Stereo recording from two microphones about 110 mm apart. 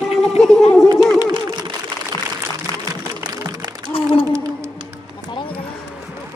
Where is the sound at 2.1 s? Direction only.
35° left (ahead or behind).